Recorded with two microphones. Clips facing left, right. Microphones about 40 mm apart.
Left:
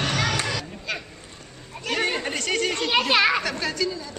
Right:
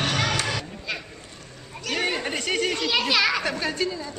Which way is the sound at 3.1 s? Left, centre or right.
Left.